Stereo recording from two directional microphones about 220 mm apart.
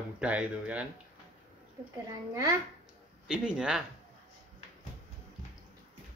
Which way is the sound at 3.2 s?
5° right (ahead or behind).